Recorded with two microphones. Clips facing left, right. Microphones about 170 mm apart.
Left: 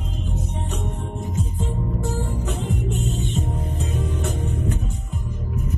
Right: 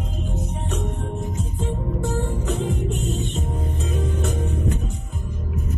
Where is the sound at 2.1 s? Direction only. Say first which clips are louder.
Right 2 dB; 65° right (ahead or behind).